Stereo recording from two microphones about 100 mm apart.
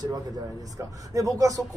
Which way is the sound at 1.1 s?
35° right (ahead or behind).